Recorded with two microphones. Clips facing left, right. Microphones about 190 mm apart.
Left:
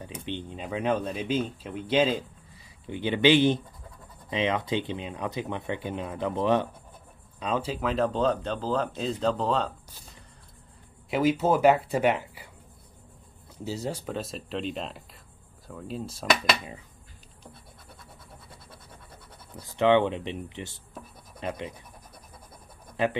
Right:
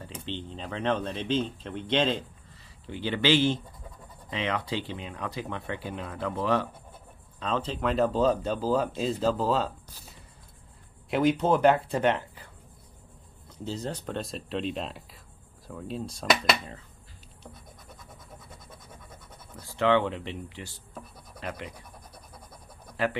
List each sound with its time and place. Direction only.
0.0 s speech: 15° left (ahead or behind)
2.9 s speech: 20° left (ahead or behind); by 9.7 s 5° right (ahead or behind)
11.1 s speech: centre (ahead or behind)
13.7 s speech: 10° left (ahead or behind)
19.5 s speech: 20° left (ahead or behind)
23.0 s speech: 20° left (ahead or behind)